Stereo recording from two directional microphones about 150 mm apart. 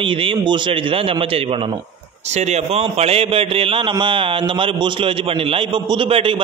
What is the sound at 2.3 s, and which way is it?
A man's voice, 50° right (ahead or behind).